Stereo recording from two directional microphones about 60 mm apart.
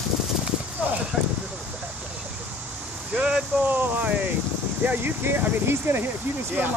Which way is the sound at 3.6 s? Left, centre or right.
Right.